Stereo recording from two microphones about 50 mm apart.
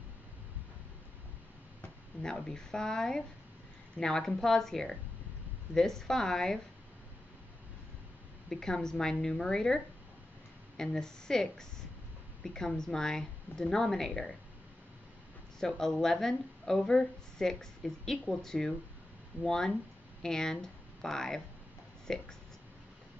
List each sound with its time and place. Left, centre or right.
2.2 s a woman's voice: centre
8.5 s a woman's voice: centre
10.8 s a woman's voice: centre
15.6 s a woman's voice: centre